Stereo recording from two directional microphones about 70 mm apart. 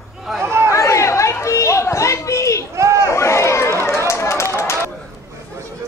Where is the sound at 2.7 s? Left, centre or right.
Right.